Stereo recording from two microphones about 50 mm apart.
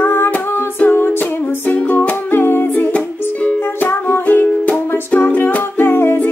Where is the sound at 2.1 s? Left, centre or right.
Left.